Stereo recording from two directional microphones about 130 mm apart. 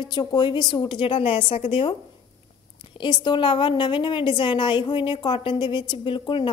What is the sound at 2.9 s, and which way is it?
A woman's voice, 35° left (ahead or behind).